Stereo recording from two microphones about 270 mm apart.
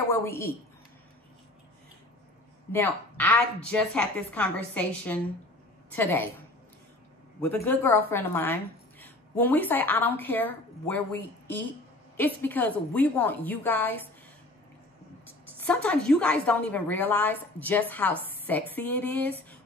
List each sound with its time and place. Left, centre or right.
0.1 s a woman's voice: centre
2.7 s a woman's voice: centre
7.4 s a woman's voice: centre
15.6 s a woman's voice: centre